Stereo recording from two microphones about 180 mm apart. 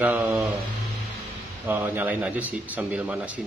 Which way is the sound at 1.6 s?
10° right (ahead or behind).